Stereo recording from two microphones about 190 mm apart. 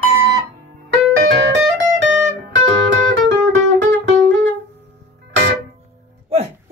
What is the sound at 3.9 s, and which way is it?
Music, 70° right (ahead or behind).